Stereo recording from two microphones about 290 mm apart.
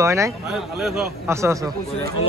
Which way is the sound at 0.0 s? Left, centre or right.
Centre.